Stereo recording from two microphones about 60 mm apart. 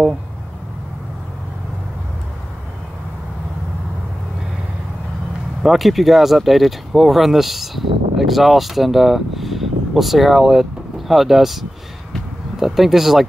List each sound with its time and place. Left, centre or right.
5.6 s speech: centre